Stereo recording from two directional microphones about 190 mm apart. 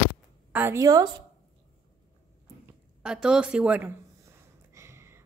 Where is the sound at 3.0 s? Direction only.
5° right (ahead or behind).